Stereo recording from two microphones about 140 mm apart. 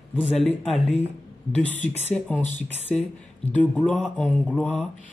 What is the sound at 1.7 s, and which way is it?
Speech, 50° left (ahead or behind).